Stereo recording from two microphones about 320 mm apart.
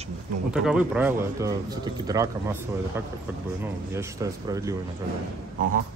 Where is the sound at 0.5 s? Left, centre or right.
Centre.